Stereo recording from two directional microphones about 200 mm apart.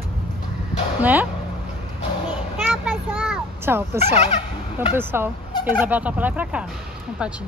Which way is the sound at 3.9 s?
35° left (ahead or behind).